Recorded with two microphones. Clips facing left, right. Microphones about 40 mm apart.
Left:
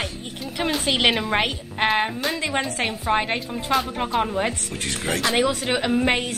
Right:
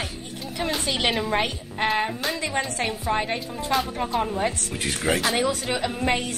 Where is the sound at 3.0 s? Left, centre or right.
Left.